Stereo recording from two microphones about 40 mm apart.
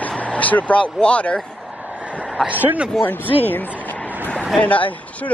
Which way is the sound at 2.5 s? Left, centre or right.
Right.